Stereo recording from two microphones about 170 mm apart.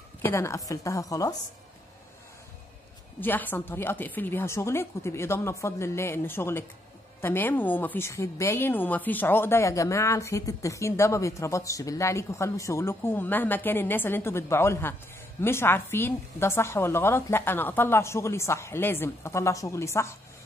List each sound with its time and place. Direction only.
0.2 s speech: 15° left (ahead or behind)
3.2 s a woman's voice: 10° left (ahead or behind)